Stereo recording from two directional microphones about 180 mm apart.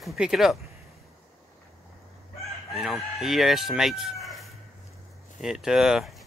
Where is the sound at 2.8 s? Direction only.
Centre (ahead or behind).